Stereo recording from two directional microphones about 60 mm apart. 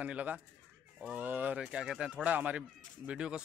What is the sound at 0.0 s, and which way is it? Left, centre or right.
Speech, right.